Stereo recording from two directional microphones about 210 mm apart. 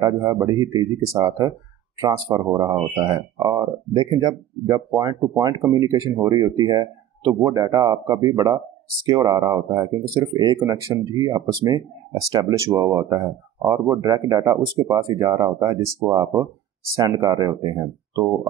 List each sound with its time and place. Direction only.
0.0 s speech: 15° right (ahead or behind)